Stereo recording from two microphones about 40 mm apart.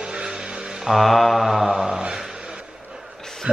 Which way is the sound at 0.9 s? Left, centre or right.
Centre.